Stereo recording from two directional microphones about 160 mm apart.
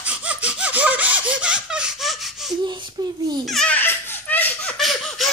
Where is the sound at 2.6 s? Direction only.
30° right (ahead or behind).